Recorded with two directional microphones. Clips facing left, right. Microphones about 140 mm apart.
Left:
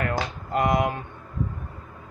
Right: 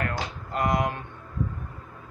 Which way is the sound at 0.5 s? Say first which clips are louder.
Left 3 dB; 10° left (ahead or behind).